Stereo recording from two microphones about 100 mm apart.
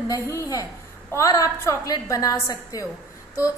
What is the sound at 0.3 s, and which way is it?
A woman's voice, 30° left (ahead or behind).